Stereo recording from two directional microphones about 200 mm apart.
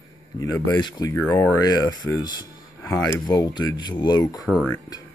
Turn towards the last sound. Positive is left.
turn(degrees=15)  # may be behind; listen again after turning